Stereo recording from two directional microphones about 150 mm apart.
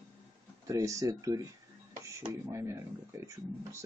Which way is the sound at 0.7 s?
20° right (ahead or behind).